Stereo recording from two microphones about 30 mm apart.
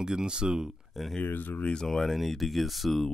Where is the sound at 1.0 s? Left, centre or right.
Centre.